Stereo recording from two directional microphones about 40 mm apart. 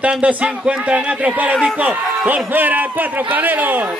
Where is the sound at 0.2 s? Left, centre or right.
Right.